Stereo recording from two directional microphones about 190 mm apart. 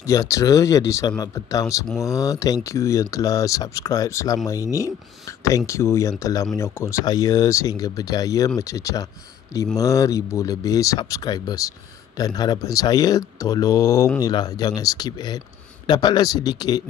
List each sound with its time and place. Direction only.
0.0 s speech: 15° left (ahead or behind)